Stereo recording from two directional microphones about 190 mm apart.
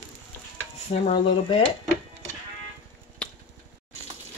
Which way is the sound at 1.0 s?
30° left (ahead or behind).